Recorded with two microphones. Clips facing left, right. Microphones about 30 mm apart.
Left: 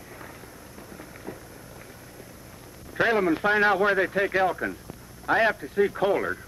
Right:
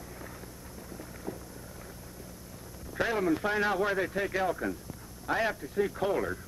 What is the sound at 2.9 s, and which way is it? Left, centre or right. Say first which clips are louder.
Speech: left 6 dB; left.